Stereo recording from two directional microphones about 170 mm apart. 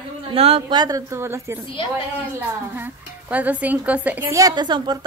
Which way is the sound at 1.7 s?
30° left (ahead or behind).